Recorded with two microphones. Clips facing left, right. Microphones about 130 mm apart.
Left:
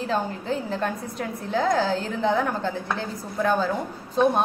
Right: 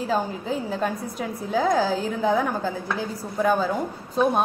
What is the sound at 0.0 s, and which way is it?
Speech, 5° right (ahead or behind).